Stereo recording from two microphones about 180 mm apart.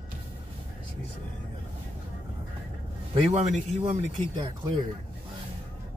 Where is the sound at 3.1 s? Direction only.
40° right (ahead or behind).